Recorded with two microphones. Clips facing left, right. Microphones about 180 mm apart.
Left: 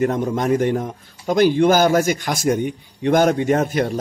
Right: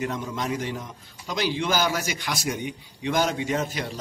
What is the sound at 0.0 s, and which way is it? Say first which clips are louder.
Speech: left 10 dB; 50° left (ahead or behind).